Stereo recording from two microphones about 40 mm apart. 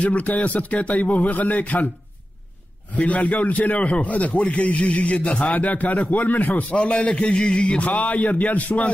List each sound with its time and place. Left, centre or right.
0.0 s a man's voice: left
2.9 s a man's voice: left